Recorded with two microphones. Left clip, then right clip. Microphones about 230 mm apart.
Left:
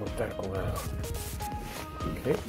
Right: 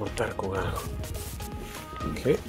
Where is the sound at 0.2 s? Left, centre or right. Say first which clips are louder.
Right 4 dB; right.